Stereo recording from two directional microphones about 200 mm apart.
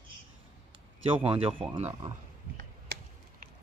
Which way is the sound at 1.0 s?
25° right (ahead or behind).